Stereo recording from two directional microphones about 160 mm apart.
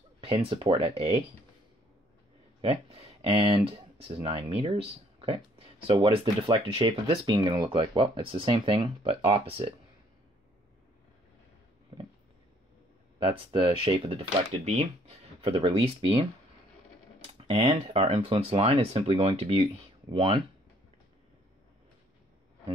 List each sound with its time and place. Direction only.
0.2 s speech: 35° right (ahead or behind)
2.6 s speech: 35° right (ahead or behind)
13.2 s speech: 35° right (ahead or behind)
17.3 s speech: 35° right (ahead or behind)